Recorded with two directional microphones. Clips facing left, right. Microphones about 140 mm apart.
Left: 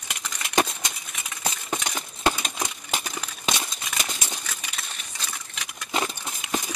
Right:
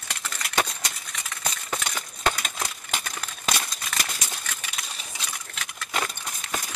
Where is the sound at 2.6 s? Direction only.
5° left (ahead or behind).